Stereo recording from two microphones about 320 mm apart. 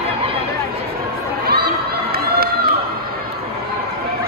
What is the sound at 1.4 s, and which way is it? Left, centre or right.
Crowd, right.